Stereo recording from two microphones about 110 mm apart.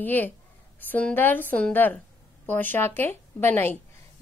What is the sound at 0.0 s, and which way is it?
A woman's voice, 15° left (ahead or behind).